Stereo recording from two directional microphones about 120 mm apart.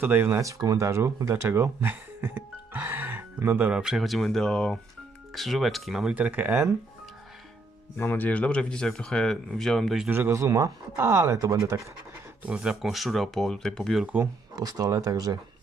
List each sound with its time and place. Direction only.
0.0 s speech: 20° right (ahead or behind)
8.0 s speech: 15° left (ahead or behind)
10.0 s speech: 20° right (ahead or behind)
12.4 s speech: 10° right (ahead or behind)
14.0 s speech: 15° right (ahead or behind)
14.5 s speech: 30° right (ahead or behind)